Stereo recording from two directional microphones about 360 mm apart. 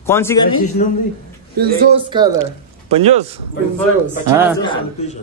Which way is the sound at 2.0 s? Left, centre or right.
Centre.